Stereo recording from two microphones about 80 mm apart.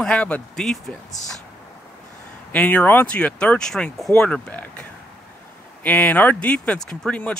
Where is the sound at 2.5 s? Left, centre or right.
Centre.